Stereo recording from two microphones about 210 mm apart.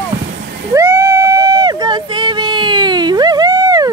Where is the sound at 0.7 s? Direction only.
15° right (ahead or behind).